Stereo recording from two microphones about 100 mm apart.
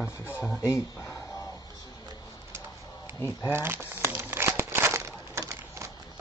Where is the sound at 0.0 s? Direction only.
15° right (ahead or behind).